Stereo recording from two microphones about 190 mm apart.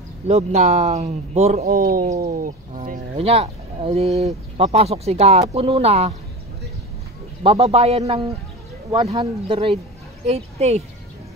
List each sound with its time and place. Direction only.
0.3 s speech: 35° right (ahead or behind)
1.7 s speech: 55° right (ahead or behind)
3.2 s speech: 30° right (ahead or behind)
7.4 s speech: 35° right (ahead or behind)